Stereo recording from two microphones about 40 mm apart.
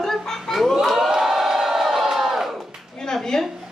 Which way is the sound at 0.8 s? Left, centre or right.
Centre.